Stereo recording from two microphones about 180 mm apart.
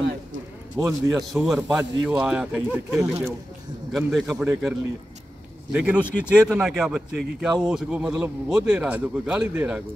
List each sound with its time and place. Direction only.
0.7 s speech: 15° right (ahead or behind)
1.3 s speech: centre (ahead or behind)
3.9 s speech: 5° right (ahead or behind)
5.7 s speech: 5° right (ahead or behind)